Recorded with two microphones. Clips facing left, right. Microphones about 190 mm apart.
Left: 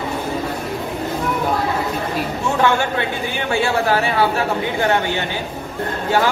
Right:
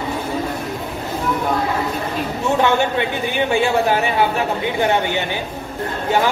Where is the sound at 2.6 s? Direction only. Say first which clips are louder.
Even; 20° right (ahead or behind).